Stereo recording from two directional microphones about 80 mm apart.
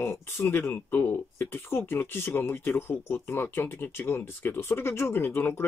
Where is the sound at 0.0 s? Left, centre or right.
Left.